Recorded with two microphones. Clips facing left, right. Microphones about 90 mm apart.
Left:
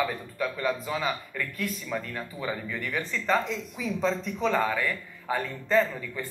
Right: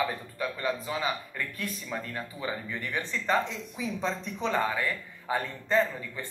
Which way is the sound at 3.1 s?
5° right (ahead or behind).